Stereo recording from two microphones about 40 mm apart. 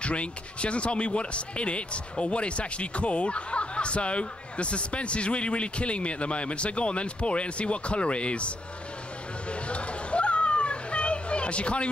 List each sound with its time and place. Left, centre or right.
0.0 s speech: left
9.5 s children playing: left